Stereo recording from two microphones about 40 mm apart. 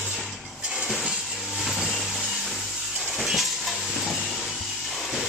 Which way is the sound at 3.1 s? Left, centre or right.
Centre.